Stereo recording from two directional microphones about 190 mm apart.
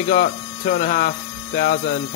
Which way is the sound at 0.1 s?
50° left (ahead or behind).